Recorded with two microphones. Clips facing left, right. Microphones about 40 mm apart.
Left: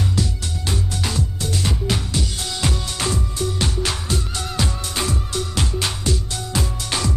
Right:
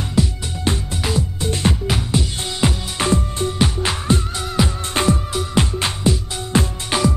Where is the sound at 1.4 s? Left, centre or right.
Right.